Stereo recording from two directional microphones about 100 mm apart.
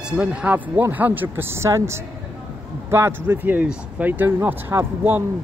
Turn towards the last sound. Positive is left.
turn(degrees=-20)  # may be behind; listen again after turning